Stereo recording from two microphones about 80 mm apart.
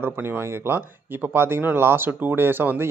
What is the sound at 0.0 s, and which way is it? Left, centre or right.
A man's voice, right.